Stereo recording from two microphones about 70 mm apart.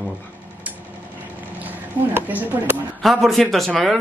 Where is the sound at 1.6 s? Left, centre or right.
Right.